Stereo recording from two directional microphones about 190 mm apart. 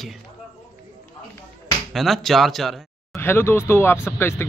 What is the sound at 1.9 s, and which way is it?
Speech, centre (ahead or behind).